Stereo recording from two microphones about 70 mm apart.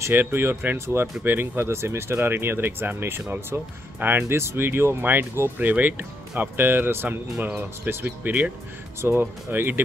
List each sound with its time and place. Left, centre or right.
0.1 s speech: right
0.7 s speech: right
1.2 s speech: right